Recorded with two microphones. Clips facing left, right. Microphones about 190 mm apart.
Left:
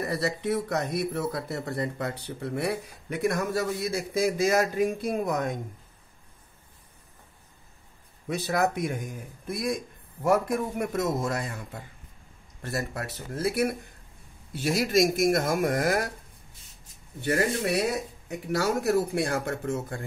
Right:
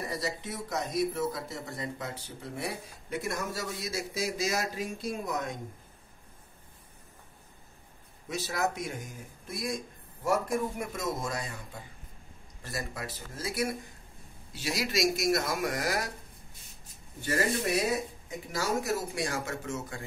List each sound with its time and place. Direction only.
0.0 s speech: 65° left (ahead or behind)
8.3 s speech: 55° left (ahead or behind)
18.3 s speech: 65° left (ahead or behind)